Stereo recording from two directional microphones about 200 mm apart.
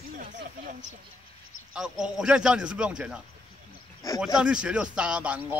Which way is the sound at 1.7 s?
5° right (ahead or behind).